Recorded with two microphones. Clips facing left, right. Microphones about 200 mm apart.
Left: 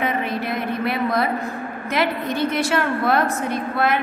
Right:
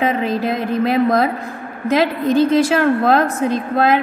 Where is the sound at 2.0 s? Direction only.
90° right.